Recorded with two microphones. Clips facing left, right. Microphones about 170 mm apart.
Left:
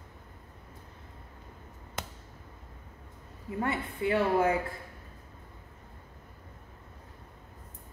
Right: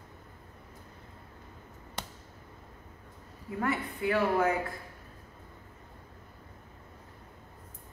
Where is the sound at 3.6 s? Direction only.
25° left (ahead or behind).